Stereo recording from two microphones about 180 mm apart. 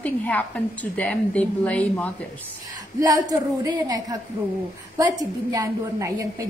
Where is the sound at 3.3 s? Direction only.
20° right (ahead or behind).